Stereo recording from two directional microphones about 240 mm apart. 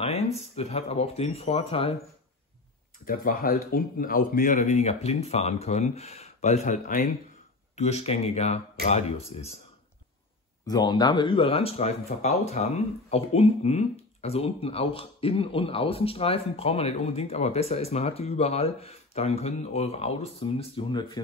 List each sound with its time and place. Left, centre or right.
0.0 s speech: left
3.1 s speech: left
10.7 s speech: centre